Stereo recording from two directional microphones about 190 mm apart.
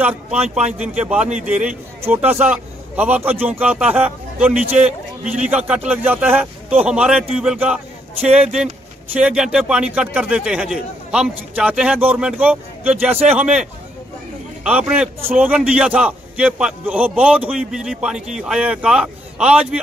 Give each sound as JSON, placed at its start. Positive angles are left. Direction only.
{"t": 0.4, "sound": "speech", "side_deg": -35}
{"t": 0.7, "sound": "a man's voice", "side_deg": -5}
{"t": 9.1, "sound": "a man's voice", "side_deg": -5}